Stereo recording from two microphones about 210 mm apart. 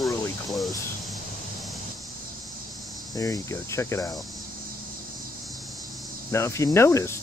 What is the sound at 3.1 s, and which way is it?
Speech, 15° left (ahead or behind).